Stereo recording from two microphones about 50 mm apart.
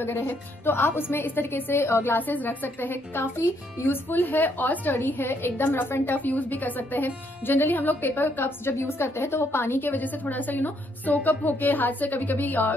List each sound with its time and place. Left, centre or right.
0.2 s a woman's voice: left
0.7 s a woman's voice: left
2.0 s a woman's voice: left
6.1 s a woman's voice: left